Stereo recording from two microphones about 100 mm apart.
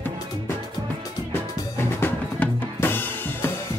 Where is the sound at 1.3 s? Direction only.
20° left (ahead or behind).